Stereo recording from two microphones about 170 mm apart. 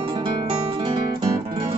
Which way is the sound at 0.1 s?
30° right (ahead or behind).